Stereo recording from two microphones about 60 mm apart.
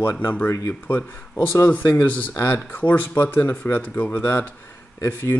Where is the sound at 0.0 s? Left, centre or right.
Left.